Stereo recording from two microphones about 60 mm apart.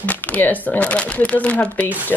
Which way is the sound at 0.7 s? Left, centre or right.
Left.